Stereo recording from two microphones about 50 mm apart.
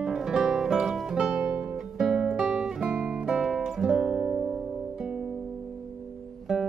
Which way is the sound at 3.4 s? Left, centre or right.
Centre.